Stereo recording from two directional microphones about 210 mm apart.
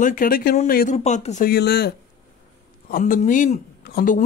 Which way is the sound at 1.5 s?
50° left (ahead or behind).